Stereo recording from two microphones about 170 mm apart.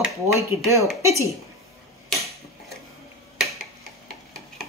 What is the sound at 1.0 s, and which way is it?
Speech, 15° right (ahead or behind).